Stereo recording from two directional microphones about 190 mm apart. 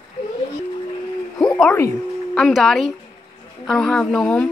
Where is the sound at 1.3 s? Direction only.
20° left (ahead or behind).